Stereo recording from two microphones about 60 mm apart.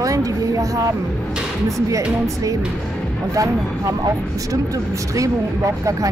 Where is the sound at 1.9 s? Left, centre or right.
Right.